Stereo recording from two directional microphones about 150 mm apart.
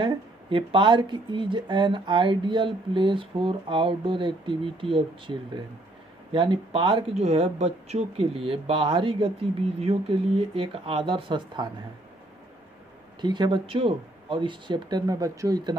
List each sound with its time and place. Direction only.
0.0 s speech: 35° right (ahead or behind)
7.2 s speech: 45° right (ahead or behind)
13.2 s speech: 30° right (ahead or behind)